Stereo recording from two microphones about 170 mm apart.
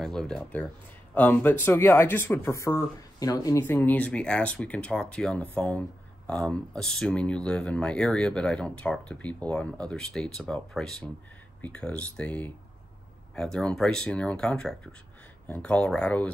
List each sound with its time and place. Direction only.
0.0 s speech: 5° left (ahead or behind)